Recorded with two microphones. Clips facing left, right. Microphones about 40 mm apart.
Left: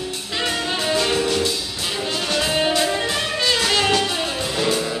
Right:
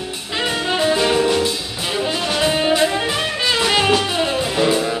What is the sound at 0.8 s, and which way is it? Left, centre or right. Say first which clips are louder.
Music: right 5 dB; centre.